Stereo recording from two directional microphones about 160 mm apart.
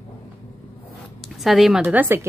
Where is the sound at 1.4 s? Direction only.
Centre (ahead or behind).